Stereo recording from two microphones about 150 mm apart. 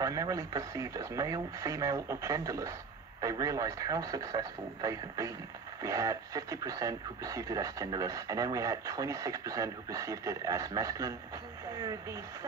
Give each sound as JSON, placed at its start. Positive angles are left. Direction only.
{"t": 0.0, "sound": "speech", "side_deg": -25}